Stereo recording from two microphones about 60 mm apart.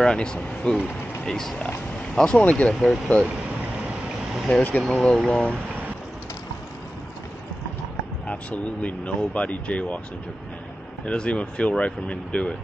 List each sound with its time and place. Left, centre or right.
0.0 s speech: centre
2.7 s speech: centre
4.5 s speech: left
4.8 s speech: centre
8.3 s speech: left
11.1 s speech: centre